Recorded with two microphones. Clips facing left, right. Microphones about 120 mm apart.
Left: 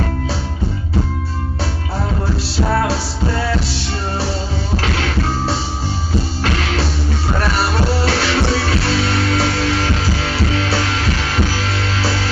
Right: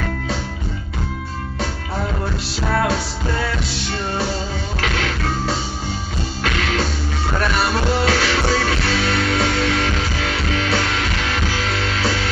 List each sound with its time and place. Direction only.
4.9 s music: 30° left (ahead or behind)
7.6 s music: 35° left (ahead or behind)
12.0 s music: 30° left (ahead or behind)